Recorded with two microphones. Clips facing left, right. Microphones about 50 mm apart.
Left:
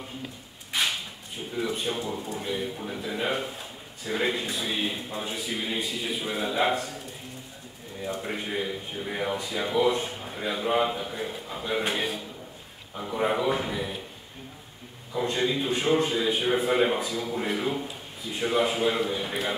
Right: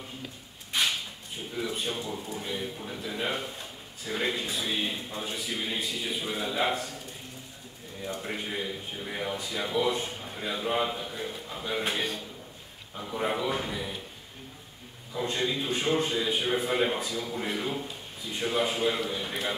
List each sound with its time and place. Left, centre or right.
0.7 s a sound: centre
1.5 s speech: centre
8.0 s speech: centre
15.1 s speech: centre